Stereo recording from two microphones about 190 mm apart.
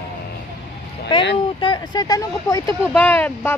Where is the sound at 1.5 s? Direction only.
25° left (ahead or behind).